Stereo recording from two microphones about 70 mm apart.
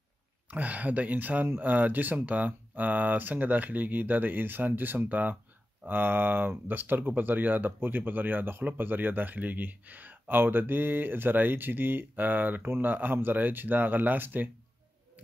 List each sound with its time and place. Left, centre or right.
0.5 s speech: right